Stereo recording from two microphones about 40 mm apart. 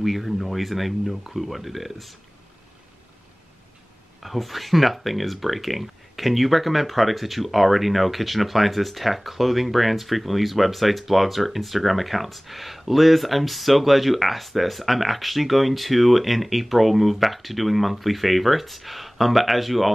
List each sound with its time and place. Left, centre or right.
0.0 s speech: centre
4.2 s speech: centre